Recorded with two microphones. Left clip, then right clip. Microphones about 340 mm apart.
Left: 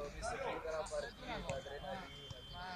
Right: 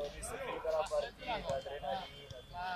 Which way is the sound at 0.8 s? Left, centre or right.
Right.